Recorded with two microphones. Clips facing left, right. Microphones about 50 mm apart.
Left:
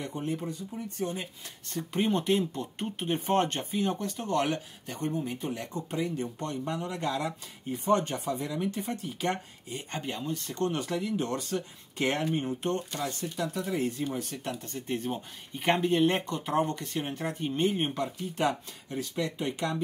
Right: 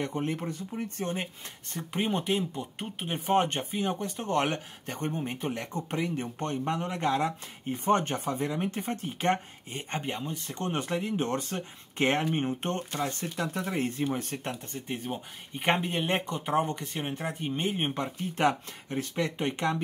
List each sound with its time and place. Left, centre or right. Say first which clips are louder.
0.0 s speech: right 2 dB; right
1.7 s speech: left 3 dB; right
2.0 s speech: left 2 dB; centre
3.4 s speech: even; right
4.0 s speech: right 1 dB; right
10.7 s speech: right 1 dB; right
14.9 s speech: left 3 dB; centre
15.5 s speech: left 2 dB; right
17.9 s speech: even; right